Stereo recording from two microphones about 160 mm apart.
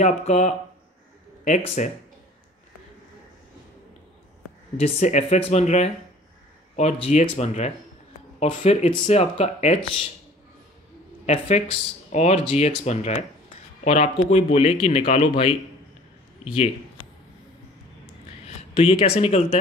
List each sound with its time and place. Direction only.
0.0 s speech: 45° left (ahead or behind)
4.7 s speech: 40° left (ahead or behind)
11.2 s speech: 45° left (ahead or behind)
18.8 s speech: 35° left (ahead or behind)